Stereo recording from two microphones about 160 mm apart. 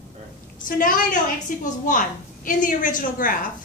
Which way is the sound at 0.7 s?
55° left (ahead or behind).